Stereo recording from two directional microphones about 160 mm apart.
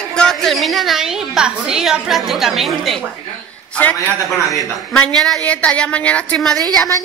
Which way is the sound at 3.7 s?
10° left (ahead or behind).